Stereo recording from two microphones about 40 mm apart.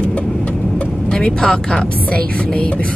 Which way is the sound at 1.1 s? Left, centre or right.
Left.